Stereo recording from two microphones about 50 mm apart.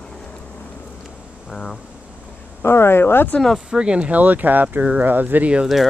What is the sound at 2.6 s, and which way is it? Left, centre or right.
Speech, left.